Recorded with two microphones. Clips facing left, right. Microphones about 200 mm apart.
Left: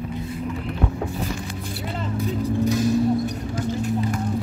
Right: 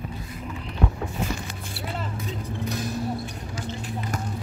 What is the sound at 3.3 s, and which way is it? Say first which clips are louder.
Basketball bounce: left 8 dB; 45° left (ahead or behind).